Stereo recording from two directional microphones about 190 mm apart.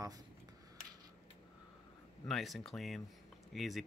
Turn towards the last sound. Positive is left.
turn(degrees=0)  # may be behind; listen again after turning